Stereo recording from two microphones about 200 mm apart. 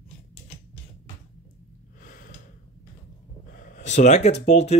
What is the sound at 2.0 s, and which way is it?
Gasp, 45° left (ahead or behind).